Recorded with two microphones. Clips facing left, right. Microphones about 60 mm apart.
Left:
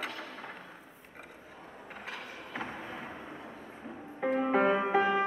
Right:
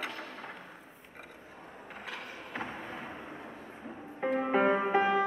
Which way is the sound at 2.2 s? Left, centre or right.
Right.